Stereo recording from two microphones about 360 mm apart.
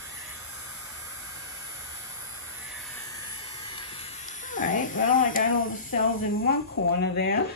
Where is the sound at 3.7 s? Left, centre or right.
Centre.